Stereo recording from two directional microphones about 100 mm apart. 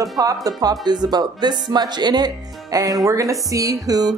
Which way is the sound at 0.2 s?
35° right (ahead or behind).